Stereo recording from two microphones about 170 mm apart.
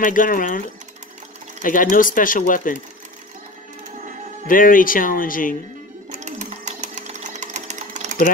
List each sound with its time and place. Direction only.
0.0 s speech: 50° left (ahead or behind)
4.5 s speech: 55° left (ahead or behind)
6.1 s sewing machine: 45° right (ahead or behind)